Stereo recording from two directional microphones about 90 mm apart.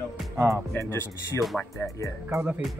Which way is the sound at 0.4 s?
35° right (ahead or behind).